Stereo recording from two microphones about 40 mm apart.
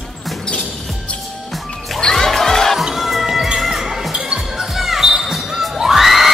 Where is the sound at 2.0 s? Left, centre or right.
Centre.